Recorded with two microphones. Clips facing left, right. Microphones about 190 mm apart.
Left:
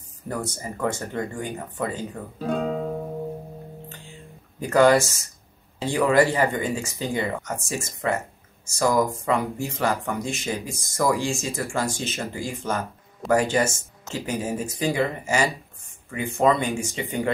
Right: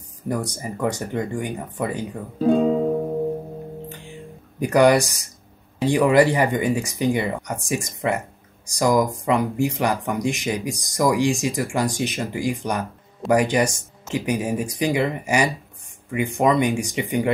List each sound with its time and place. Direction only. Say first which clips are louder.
0.3 s speech: right 4 dB; 15° right (ahead or behind)
4.6 s speech: right 2 dB; 15° right (ahead or behind)